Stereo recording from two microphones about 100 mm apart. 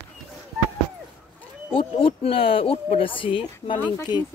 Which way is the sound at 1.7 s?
70° left (ahead or behind).